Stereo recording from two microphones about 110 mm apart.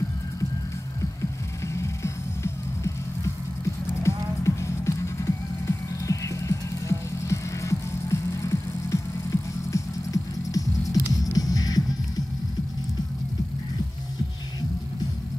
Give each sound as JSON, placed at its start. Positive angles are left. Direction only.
{"t": 1.2, "sound": "music", "side_deg": 25}
{"t": 4.0, "sound": "music", "side_deg": 25}